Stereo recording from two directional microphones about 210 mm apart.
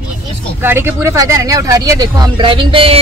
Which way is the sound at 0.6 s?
10° right (ahead or behind).